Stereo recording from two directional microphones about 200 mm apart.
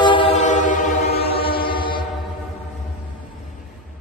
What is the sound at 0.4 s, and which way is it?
Train, 40° left (ahead or behind).